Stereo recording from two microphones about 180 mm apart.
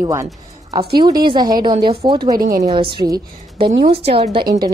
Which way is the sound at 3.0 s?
25° right (ahead or behind).